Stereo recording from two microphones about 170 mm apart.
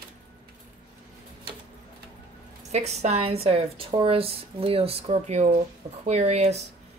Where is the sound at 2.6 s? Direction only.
40° right (ahead or behind).